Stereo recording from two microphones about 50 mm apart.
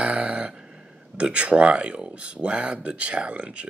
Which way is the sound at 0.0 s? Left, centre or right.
Right.